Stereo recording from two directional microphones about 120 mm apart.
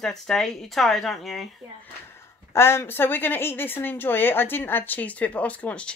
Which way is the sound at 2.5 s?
20° left (ahead or behind).